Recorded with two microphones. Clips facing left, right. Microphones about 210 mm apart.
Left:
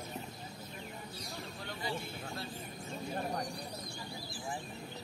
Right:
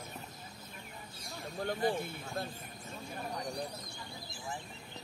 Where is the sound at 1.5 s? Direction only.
50° right (ahead or behind).